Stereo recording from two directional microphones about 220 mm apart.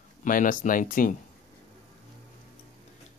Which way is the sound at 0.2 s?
35° left (ahead or behind).